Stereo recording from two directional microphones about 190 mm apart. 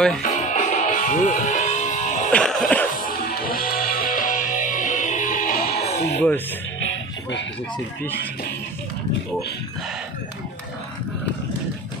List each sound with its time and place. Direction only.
0.2 s music: 40° left (ahead or behind)
2.3 s music: 5° left (ahead or behind)
2.9 s music: 50° left (ahead or behind)
5.9 s music: 35° left (ahead or behind)
6.8 s music: 75° left (ahead or behind)